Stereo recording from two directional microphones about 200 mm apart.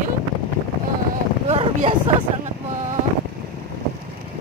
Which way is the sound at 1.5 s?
30° right (ahead or behind).